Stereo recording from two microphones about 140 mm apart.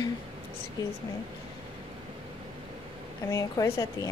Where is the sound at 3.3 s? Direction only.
25° left (ahead or behind).